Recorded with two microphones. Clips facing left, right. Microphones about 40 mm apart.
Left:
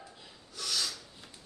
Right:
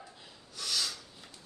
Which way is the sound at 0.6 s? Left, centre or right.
Centre.